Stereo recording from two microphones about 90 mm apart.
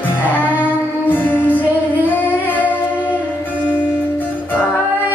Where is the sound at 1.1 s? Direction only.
20° left (ahead or behind).